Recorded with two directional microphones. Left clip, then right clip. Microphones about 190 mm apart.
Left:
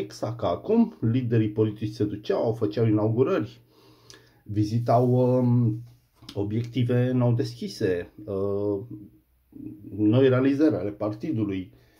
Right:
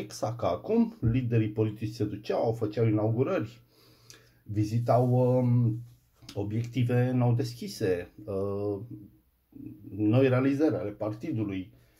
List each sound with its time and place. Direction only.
0.1 s speech: 5° left (ahead or behind)
9.9 s speech: 5° left (ahead or behind)